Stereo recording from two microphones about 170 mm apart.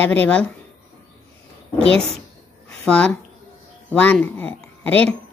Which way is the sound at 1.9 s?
35° right (ahead or behind).